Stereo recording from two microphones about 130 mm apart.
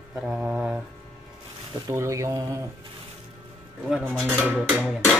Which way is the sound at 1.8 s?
25° right (ahead or behind).